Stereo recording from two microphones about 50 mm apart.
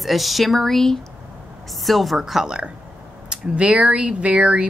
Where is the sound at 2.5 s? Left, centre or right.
Right.